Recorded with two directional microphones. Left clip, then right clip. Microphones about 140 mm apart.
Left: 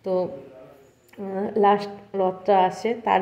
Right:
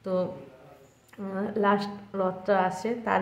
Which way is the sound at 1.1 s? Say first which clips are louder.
Left 6 dB; 20° left (ahead or behind).